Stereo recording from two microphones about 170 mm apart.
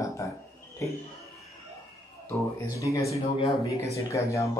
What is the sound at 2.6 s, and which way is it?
Speech, 20° left (ahead or behind).